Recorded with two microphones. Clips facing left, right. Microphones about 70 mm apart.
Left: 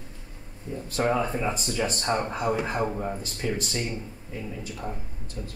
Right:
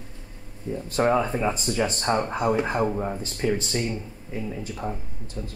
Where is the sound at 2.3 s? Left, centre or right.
Right.